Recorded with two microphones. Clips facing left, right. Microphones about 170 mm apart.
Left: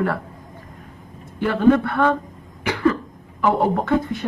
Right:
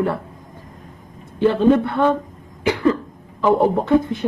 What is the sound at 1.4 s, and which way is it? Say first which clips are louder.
Speech: right 2 dB; 20° right (ahead or behind).